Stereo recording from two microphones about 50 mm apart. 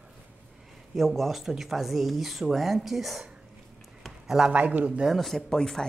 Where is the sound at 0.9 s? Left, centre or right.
Centre.